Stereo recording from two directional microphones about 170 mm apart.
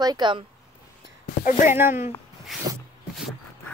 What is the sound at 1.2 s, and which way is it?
Speech, 50° left (ahead or behind).